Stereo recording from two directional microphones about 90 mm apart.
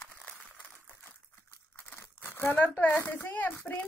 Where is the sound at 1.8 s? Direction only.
25° left (ahead or behind).